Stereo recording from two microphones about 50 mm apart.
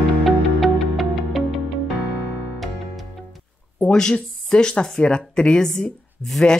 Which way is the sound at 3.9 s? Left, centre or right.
Centre.